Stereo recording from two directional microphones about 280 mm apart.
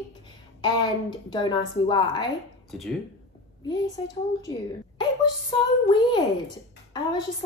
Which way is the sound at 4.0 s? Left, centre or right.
Centre.